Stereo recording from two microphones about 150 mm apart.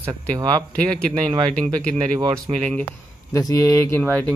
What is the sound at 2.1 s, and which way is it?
Speech, 25° right (ahead or behind).